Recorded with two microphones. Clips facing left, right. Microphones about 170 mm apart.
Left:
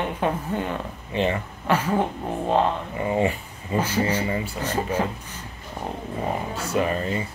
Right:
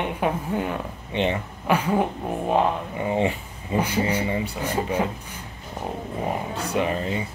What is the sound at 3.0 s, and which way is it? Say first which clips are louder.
Speech: left 1 dB; 15° right (ahead or behind).